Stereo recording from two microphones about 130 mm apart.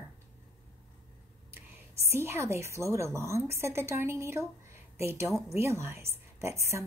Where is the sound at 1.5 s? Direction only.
20° right (ahead or behind).